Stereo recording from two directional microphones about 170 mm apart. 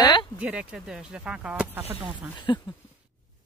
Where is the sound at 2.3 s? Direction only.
25° left (ahead or behind).